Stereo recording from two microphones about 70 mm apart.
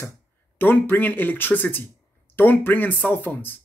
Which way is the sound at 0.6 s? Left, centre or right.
Left.